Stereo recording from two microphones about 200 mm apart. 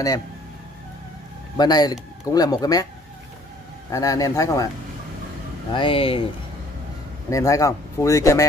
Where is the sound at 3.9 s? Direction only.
15° left (ahead or behind).